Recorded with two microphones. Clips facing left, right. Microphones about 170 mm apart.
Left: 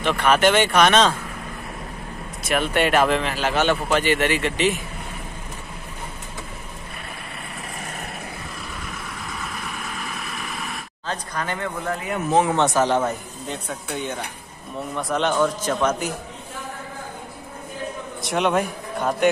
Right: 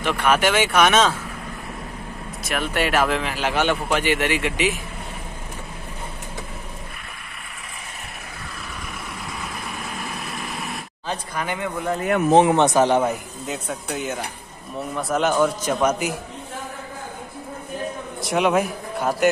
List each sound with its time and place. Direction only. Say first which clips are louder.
0.0 s a man's voice: left 2 dB; 10° right (ahead or behind)
2.4 s a man's voice: left 3 dB; centre (ahead or behind)
10.6 s a man's voice: right 1 dB; 15° right (ahead or behind)
13.5 s a man's voice: right 2 dB; 5° right (ahead or behind)
18.2 s a man's voice: right 2 dB; centre (ahead or behind)